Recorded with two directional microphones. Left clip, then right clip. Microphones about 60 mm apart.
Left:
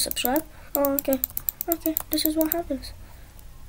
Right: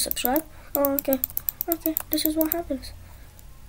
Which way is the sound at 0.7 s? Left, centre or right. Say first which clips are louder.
Even; left.